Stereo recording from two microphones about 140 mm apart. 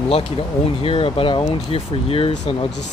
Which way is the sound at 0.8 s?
40° left (ahead or behind).